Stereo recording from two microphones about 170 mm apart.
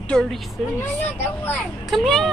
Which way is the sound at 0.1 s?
Centre (ahead or behind).